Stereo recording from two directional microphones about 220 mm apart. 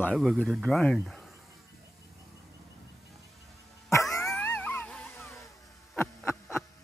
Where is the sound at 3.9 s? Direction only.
15° left (ahead or behind).